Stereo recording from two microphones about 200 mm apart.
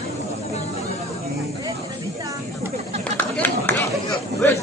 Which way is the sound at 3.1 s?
10° left (ahead or behind).